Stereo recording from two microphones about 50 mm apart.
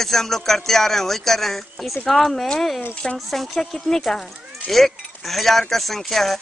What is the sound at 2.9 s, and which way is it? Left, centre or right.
Speech, left.